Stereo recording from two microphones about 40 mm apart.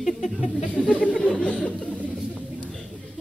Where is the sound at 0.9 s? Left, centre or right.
Left.